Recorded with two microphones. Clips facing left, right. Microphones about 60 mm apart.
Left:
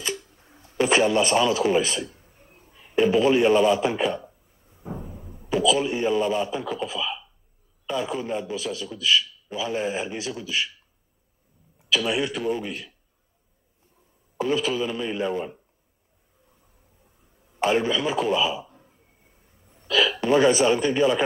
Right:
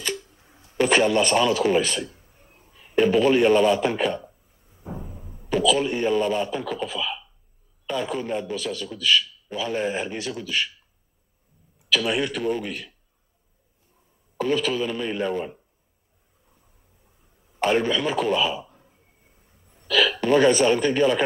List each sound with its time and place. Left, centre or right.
0.7 s a man's voice: centre
2.4 s a man's voice: centre
4.8 s a sound: centre
6.7 s a man's voice: centre
11.9 s a man's voice: centre
14.3 s a man's voice: centre
17.6 s a man's voice: centre
19.9 s a man's voice: centre